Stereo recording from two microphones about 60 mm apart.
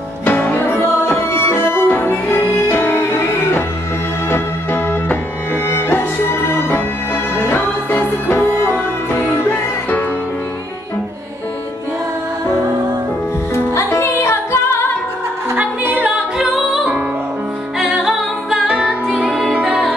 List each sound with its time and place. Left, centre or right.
0.2 s music: left
13.7 s music: left
16.0 s a capella: centre
17.8 s music: centre
18.7 s music: centre